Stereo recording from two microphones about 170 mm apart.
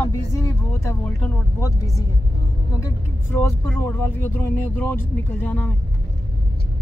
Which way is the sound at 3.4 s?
15° left (ahead or behind).